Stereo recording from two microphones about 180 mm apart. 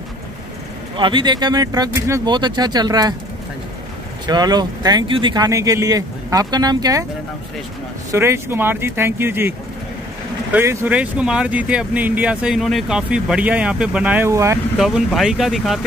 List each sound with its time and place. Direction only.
0.9 s speech: 25° right (ahead or behind)
4.3 s speech: 20° right (ahead or behind)
8.1 s speech: 15° right (ahead or behind)
14.8 s speech: centre (ahead or behind)